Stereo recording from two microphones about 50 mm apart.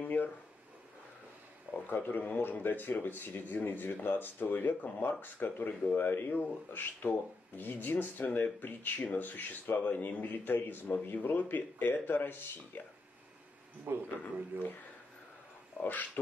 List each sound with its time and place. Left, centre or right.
0.0 s a sound: left
1.9 s speech: left
14.0 s speech: left
15.8 s speech: left